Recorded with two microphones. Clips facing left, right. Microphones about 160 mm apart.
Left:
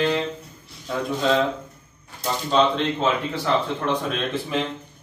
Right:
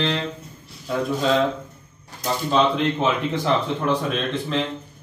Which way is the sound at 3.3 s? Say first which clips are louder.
Right 1 dB; 20° right (ahead or behind).